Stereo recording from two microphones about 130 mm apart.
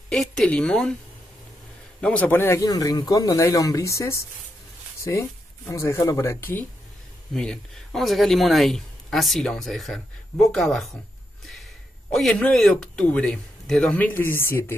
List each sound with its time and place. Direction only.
0.1 s speech: 5° left (ahead or behind)
2.0 s speech: 10° left (ahead or behind)
2.6 s speech: 30° left (ahead or behind)
7.3 s speech: 5° left (ahead or behind)
12.1 s speech: 5° left (ahead or behind); by 14.8 s 20° left (ahead or behind)